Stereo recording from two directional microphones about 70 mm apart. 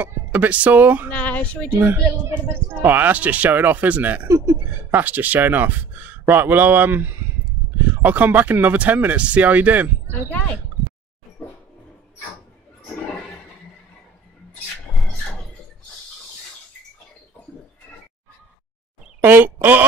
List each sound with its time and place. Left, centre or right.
0.0 s a woman's voice: right
1.1 s speech: left
1.8 s a woman's voice: right
19.2 s speech: right